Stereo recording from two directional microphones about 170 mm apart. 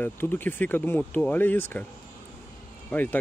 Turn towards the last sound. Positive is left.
turn(degrees=10)  # may be behind; listen again after turning